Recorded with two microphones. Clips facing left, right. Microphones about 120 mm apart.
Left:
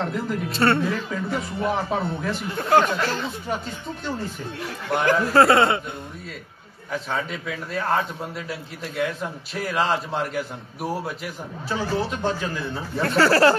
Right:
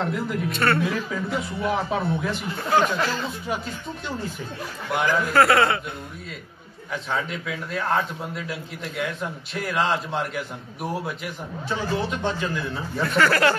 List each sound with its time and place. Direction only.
0.0 s a man's voice: centre (ahead or behind)
0.5 s a man's voice: 30° left (ahead or behind)
0.8 s a man's voice: centre (ahead or behind)
5.2 s a man's voice: 30° left (ahead or behind)
6.9 s a man's voice: centre (ahead or behind)
13.1 s speech: 35° left (ahead or behind)